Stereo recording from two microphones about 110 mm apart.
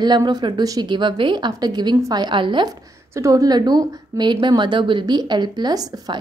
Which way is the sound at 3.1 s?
30° right (ahead or behind).